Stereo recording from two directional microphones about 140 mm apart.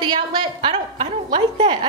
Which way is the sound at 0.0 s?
35° right (ahead or behind).